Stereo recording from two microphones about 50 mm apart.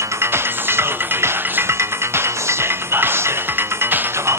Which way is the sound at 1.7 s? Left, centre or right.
Right.